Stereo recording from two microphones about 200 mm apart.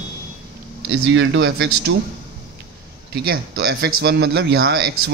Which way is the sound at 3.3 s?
50° right (ahead or behind).